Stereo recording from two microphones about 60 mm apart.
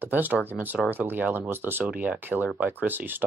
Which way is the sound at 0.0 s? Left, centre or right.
Right.